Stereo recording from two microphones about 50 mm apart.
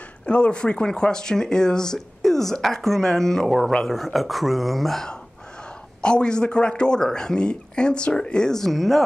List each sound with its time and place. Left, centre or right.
0.3 s speech: left; by 5.0 s centre
5.9 s speech: centre